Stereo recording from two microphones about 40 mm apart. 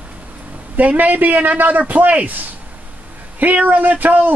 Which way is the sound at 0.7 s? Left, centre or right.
Right.